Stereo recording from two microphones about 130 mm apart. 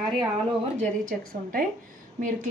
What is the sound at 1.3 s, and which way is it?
Speech, 90° right.